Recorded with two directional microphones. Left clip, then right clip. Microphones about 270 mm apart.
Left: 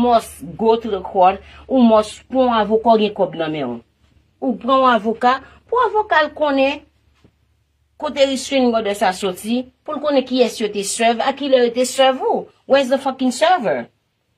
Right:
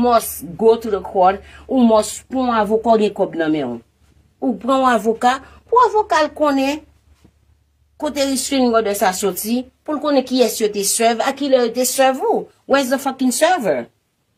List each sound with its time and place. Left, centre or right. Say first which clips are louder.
0.1 s a woman's voice: even; centre
8.0 s a woman's voice: left 3 dB; left